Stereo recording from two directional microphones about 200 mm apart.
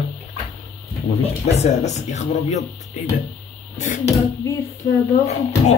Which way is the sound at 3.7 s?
35° left (ahead or behind).